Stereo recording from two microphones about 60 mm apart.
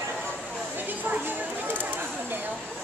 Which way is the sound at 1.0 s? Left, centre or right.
Right.